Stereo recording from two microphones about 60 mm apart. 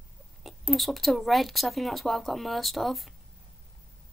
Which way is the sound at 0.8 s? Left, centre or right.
Centre.